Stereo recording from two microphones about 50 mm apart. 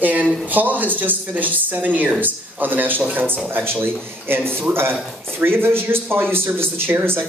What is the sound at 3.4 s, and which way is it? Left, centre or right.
Speech, right.